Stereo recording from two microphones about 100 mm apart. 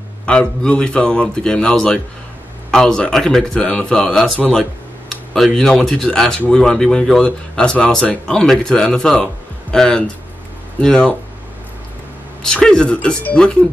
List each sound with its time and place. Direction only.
0.3 s speech: 10° left (ahead or behind)
12.4 s speech: 10° left (ahead or behind)